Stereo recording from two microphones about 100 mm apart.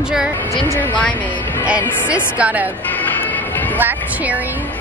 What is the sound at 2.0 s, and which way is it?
Speech, 10° right (ahead or behind).